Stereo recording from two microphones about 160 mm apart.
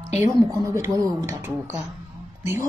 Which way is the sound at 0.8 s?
20° right (ahead or behind).